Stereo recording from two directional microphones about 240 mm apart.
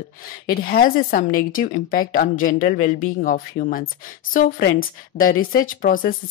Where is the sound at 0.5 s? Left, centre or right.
Left.